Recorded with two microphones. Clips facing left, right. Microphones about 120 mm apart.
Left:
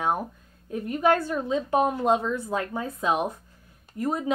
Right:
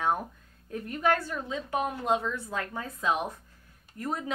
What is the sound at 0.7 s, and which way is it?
A woman's voice, 15° left (ahead or behind).